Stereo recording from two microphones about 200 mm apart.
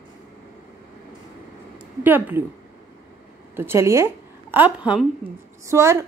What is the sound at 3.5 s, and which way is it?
A woman's voice, 10° right (ahead or behind).